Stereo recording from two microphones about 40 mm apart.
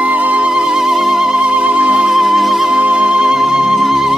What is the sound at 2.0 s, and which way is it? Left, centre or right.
Music, centre.